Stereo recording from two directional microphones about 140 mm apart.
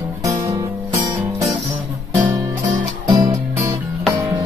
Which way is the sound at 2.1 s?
20° right (ahead or behind).